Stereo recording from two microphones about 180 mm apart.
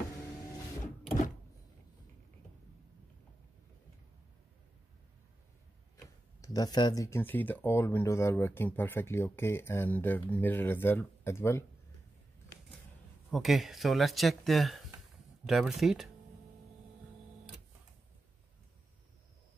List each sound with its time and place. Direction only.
6.4 s speech: 20° left (ahead or behind)
13.3 s speech: centre (ahead or behind)